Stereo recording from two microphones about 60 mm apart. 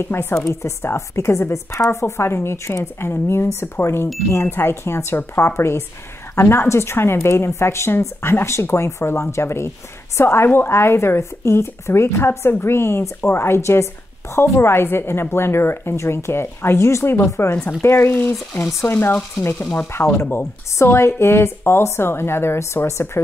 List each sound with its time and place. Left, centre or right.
0.0 s speech: left
6.4 s stir: left
6.7 s speech: left
17.8 s stir: left
19.9 s speech: left